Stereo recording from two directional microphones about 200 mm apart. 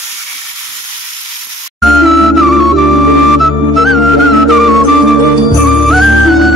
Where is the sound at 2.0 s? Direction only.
Centre (ahead or behind).